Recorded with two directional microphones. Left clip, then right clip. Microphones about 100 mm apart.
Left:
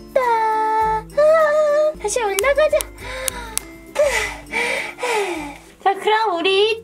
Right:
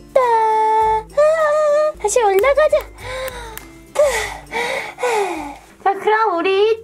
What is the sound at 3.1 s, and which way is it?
Music, 35° right (ahead or behind).